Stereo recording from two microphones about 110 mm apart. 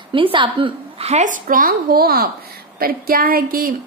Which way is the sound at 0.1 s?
50° right (ahead or behind).